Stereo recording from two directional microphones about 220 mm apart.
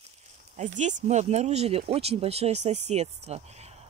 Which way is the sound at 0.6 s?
35° right (ahead or behind).